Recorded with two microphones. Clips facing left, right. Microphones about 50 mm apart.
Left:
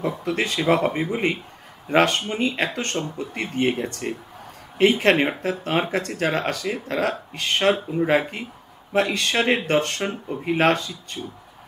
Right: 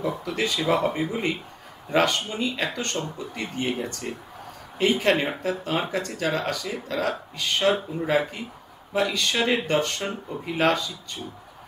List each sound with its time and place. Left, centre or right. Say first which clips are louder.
0.2 s speech: left 2 dB; left